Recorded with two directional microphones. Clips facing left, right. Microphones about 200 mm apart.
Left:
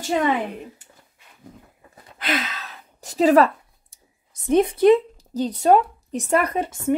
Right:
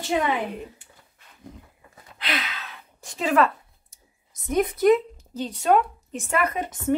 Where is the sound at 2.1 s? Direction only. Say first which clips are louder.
Left 5 dB; 45° left (ahead or behind).